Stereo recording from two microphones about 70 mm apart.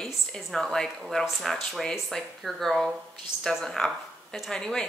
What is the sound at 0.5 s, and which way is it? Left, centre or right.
Speech, centre.